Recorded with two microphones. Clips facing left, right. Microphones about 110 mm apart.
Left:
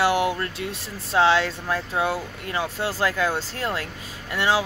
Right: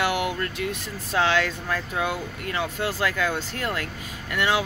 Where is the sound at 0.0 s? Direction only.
30° left (ahead or behind).